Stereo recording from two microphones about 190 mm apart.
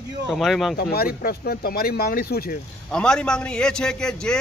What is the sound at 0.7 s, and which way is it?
Speech, 50° left (ahead or behind).